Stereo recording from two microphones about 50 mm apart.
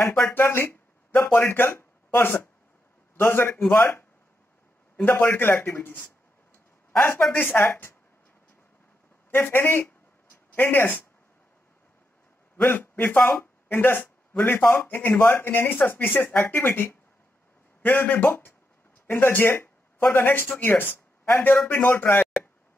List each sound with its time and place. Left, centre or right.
0.3 s speech: left
5.0 s speech: left
7.3 s speech: left
9.3 s speech: left
12.6 s a man's voice: left
16.4 s speech: left
17.8 s a man's voice: left
21.9 s speech: left